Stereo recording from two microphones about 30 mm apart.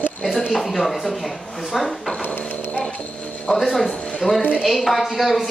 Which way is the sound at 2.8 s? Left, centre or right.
Left.